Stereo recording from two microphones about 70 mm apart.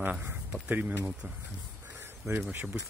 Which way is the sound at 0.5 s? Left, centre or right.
Right.